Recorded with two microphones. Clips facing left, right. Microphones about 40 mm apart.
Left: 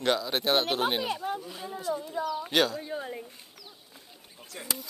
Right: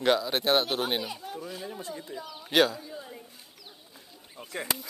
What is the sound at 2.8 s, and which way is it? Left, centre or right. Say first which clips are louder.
Speech: left 6 dB; left.